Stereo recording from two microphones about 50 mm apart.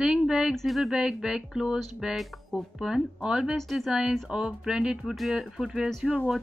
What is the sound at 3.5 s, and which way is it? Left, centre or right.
Speech, centre.